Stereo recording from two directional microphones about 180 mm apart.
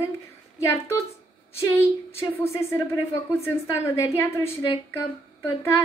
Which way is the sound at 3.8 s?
15° left (ahead or behind).